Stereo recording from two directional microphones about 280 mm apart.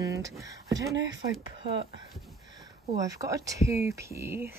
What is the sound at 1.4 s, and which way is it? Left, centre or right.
Speech, right.